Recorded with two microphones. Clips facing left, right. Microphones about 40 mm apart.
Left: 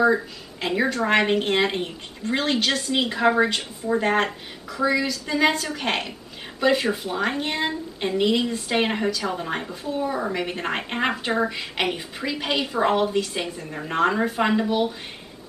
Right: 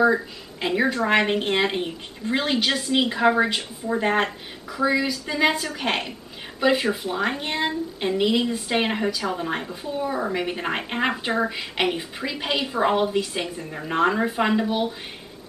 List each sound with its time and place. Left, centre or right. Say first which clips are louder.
0.0 s speech: even; centre